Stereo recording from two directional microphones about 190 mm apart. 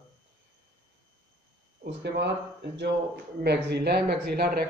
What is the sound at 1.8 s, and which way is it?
Speech, 60° right (ahead or behind).